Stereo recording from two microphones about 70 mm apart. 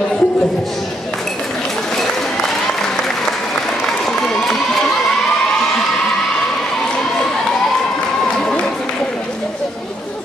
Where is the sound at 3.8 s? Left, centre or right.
Centre.